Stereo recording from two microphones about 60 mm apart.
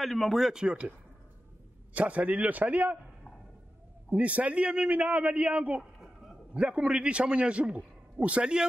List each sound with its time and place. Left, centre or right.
0.0 s speech: centre
2.0 s a man's voice: right
4.1 s a man's voice: right